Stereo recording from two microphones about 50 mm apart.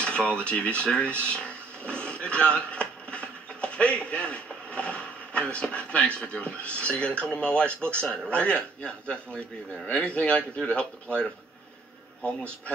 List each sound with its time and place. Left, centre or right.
0.0 s speech: left